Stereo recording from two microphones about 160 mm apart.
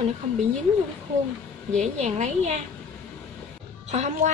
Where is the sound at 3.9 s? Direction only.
45° right (ahead or behind).